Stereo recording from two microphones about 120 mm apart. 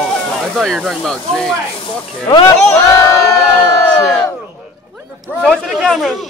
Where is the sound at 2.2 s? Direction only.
40° left (ahead or behind).